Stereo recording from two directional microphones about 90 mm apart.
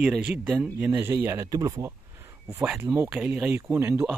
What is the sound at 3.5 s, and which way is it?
Speech, 25° right (ahead or behind).